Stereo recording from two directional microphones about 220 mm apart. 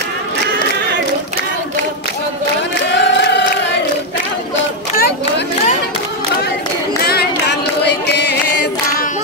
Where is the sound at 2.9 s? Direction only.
50° left (ahead or behind).